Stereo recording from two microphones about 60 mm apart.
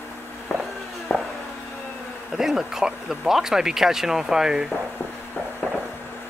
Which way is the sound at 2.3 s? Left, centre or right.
Centre.